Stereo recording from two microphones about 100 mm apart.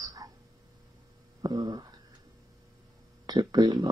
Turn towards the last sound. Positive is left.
turn(degrees=-45)  # may be behind; listen again after turning